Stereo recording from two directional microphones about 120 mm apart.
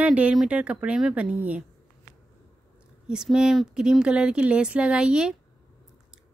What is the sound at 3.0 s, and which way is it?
Speech, 5° right (ahead or behind).